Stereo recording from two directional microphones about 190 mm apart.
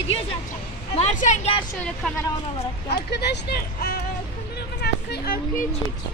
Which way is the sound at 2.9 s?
60° left (ahead or behind).